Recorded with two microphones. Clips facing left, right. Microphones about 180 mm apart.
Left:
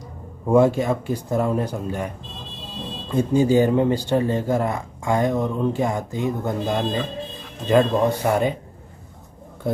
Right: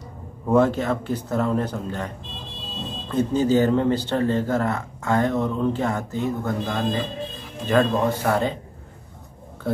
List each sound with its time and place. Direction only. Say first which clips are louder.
0.5 s speech: left 2 dB; 10° left (ahead or behind)